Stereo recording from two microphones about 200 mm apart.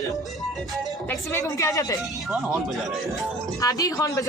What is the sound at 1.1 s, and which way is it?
Speech, 15° left (ahead or behind).